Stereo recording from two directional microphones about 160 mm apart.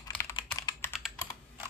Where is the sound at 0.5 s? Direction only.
25° left (ahead or behind).